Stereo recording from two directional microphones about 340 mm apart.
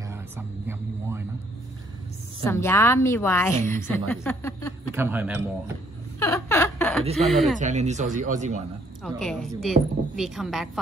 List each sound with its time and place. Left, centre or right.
0.1 s a sound: centre
2.4 s a woman's voice: centre
4.9 s a woman's voice: centre
6.1 s a sound: centre
7.2 s a woman's voice: centre
7.5 s speech: right
9.0 s a woman's voice: centre